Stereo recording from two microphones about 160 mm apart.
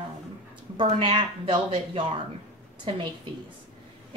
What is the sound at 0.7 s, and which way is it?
Speech, 35° right (ahead or behind).